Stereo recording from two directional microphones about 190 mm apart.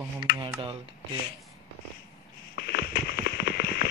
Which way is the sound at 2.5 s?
55° left (ahead or behind).